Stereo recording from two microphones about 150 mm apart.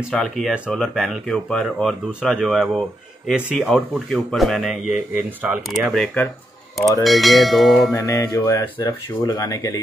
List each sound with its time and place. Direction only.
0.1 s speech: centre (ahead or behind)
7.9 s speech: 20° left (ahead or behind)